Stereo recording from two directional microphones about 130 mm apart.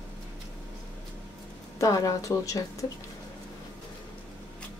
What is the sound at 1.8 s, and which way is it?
Speech, 25° left (ahead or behind).